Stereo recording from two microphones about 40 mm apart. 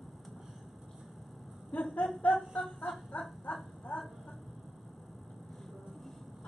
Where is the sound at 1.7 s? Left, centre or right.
Left.